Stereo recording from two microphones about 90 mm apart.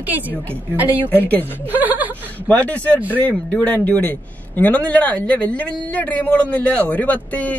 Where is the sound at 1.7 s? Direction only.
20° right (ahead or behind).